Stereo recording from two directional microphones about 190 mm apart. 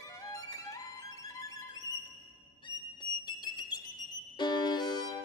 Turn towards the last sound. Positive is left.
turn(degrees=25)  # may be behind; listen again after turning